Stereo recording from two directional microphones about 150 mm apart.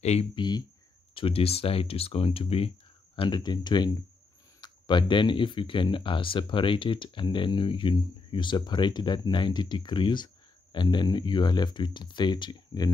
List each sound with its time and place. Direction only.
0.0 s speech: 45° left (ahead or behind)
0.4 s speech: 25° left (ahead or behind)
1.1 s speech: 40° left (ahead or behind)